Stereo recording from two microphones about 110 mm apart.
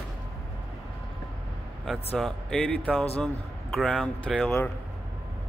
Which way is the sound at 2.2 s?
5° left (ahead or behind).